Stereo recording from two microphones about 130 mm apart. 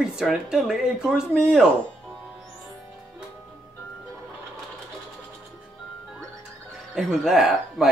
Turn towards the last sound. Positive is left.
turn(degrees=-5)  # may be behind; listen again after turning